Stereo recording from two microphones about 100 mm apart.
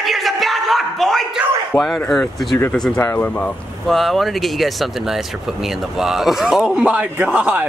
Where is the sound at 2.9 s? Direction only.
20° left (ahead or behind).